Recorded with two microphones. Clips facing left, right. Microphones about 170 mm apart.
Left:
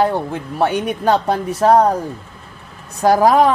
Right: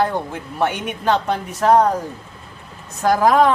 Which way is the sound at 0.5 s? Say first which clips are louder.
Left 4 dB; 35° left (ahead or behind).